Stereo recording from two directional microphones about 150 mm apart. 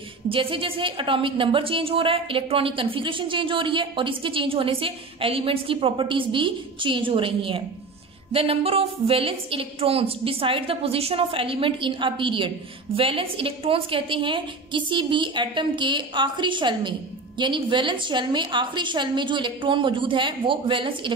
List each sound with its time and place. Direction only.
0.3 s a woman's voice: 35° right (ahead or behind)